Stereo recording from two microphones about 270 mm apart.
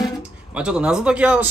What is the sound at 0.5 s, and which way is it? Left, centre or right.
Speech, centre.